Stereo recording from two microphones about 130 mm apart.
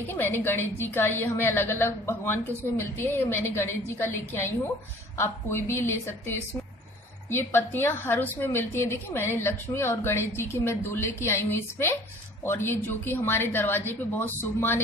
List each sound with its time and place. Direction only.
0.0 s a woman's voice: 15° left (ahead or behind)